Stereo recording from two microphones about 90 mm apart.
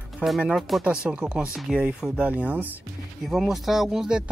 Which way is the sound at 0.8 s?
10° right (ahead or behind).